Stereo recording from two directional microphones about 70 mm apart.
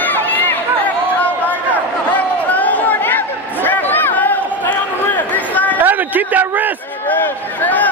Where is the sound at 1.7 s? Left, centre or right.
Left.